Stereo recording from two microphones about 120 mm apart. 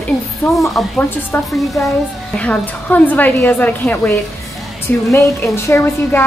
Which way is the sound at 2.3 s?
10° left (ahead or behind).